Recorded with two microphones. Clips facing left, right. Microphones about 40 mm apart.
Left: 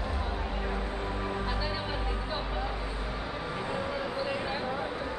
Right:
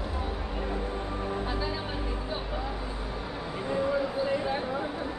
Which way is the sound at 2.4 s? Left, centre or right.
Centre.